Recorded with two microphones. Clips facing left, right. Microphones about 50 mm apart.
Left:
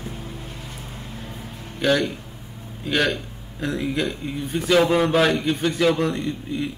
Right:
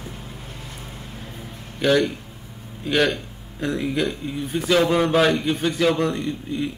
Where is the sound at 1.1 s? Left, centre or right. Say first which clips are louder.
Left 1 dB; centre.